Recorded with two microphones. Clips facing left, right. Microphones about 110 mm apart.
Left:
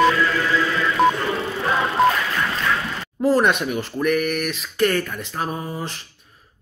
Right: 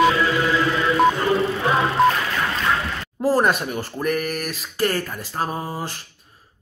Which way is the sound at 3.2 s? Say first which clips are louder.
Left 1 dB; 35° right (ahead or behind).